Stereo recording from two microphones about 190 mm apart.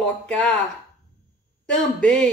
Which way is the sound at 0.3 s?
5° left (ahead or behind).